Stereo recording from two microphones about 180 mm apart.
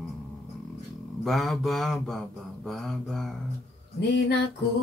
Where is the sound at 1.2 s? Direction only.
Centre (ahead or behind).